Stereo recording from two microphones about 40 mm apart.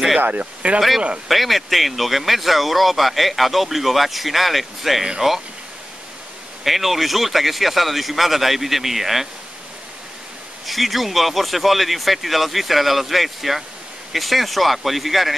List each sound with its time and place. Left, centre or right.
0.2 s speech: right
1.3 s speech: centre
6.6 s speech: centre
10.7 s speech: centre